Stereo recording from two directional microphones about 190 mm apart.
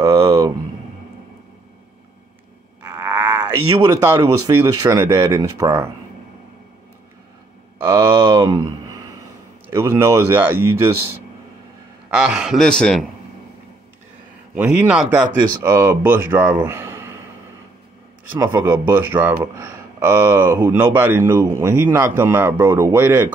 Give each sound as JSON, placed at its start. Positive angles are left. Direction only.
{"t": 0.0, "sound": "a sound", "side_deg": -15}
{"t": 3.0, "sound": "a sound", "side_deg": -10}
{"t": 4.2, "sound": "speech", "side_deg": -15}
{"t": 7.8, "sound": "speech", "side_deg": -15}
{"t": 12.2, "sound": "a man's voice", "side_deg": 0}
{"t": 14.5, "sound": "speech", "side_deg": -5}
{"t": 15.4, "sound": "speech", "side_deg": -20}
{"t": 18.4, "sound": "speech", "side_deg": -10}